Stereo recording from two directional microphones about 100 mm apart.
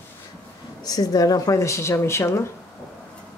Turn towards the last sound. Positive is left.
turn(degrees=25)  # may be behind; listen again after turning